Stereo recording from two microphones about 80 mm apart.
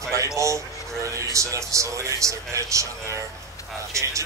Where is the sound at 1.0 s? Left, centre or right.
Right.